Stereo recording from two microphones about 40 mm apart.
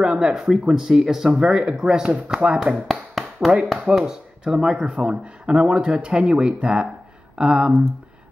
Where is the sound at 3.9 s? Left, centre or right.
Centre.